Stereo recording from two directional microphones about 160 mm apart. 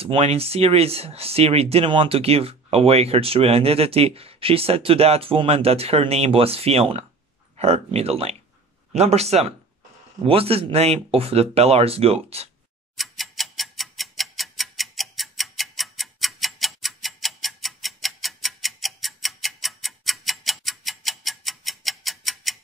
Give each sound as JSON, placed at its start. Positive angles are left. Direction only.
{"t": 0.0, "sound": "speech", "side_deg": -40}
{"t": 12.9, "sound": "tick-tock", "side_deg": 0}